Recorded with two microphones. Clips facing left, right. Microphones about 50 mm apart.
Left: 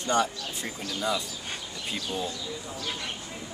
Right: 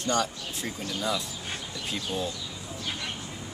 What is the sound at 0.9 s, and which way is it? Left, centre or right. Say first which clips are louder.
Speech: left 1 dB; centre.